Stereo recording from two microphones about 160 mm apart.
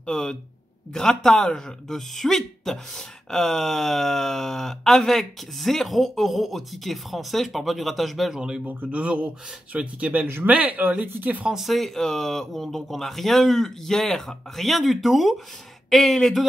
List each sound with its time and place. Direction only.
0.0 s speech: 5° left (ahead or behind)